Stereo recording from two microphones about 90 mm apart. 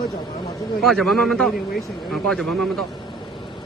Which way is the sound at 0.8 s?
5° left (ahead or behind).